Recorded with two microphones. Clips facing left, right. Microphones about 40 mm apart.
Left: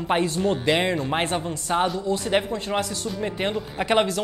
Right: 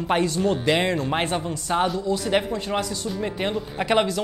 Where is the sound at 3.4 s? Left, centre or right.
Centre.